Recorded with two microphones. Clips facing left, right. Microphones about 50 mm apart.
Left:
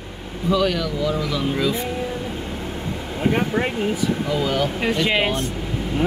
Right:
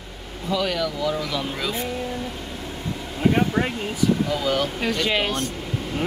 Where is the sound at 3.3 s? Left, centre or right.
Centre.